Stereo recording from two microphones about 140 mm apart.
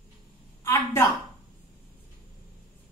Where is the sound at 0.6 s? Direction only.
20° left (ahead or behind).